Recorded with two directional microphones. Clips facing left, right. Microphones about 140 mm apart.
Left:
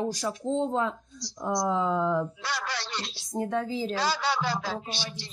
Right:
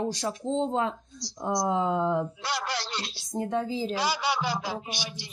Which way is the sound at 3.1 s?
30° left (ahead or behind).